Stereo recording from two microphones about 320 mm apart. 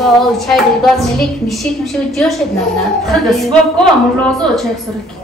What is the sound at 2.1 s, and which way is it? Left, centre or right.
Speech, centre.